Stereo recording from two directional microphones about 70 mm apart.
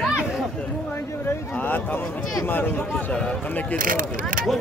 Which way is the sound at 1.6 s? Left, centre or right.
Left.